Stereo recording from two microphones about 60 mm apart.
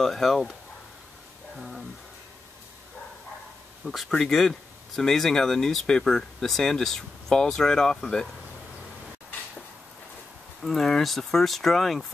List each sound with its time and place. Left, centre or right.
0.0 s speech: centre
3.8 s speech: centre
10.6 s speech: centre